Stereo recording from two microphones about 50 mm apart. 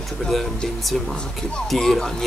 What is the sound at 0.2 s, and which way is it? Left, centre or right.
Speech, centre.